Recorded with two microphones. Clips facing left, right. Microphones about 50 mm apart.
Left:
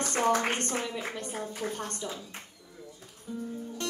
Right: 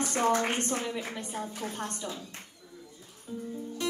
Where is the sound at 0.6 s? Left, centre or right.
Left.